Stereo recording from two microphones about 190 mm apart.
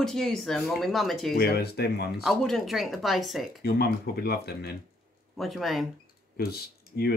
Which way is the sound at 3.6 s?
55° left (ahead or behind).